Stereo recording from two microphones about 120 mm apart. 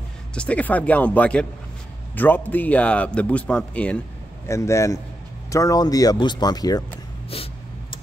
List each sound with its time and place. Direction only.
0.3 s a man's voice: 10° left (ahead or behind)
4.5 s a man's voice: 25° left (ahead or behind)